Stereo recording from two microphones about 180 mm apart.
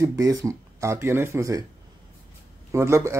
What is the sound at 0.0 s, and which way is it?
A man's voice, 15° right (ahead or behind).